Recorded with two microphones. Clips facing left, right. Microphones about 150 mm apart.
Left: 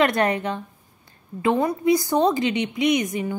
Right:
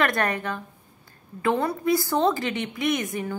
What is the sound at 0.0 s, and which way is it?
A woman's voice, 20° left (ahead or behind).